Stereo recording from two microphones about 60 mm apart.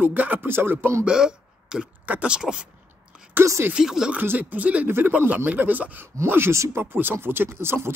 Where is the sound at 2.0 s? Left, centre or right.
Right.